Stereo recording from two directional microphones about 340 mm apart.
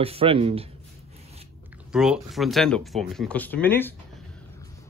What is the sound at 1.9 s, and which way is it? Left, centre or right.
Speech, centre.